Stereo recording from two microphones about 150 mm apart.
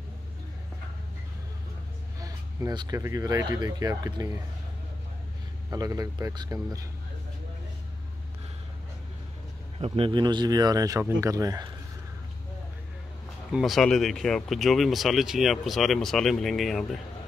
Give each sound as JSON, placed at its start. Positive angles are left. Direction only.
{"t": 2.1, "sound": "a sound", "side_deg": -25}
{"t": 3.0, "sound": "speech", "side_deg": -25}
{"t": 5.7, "sound": "speech", "side_deg": -25}
{"t": 9.8, "sound": "speech", "side_deg": -35}
{"t": 13.5, "sound": "speech", "side_deg": 0}